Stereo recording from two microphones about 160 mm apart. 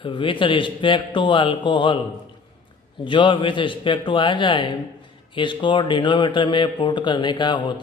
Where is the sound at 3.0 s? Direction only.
30° left (ahead or behind).